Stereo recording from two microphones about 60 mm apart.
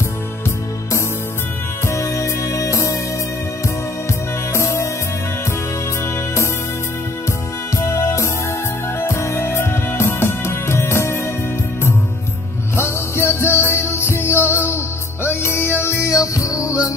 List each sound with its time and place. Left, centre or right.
1.9 s music: left
4.6 s music: left
7.7 s music: left
12.7 s music: left